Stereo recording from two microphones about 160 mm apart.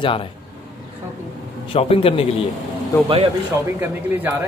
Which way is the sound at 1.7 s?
35° left (ahead or behind).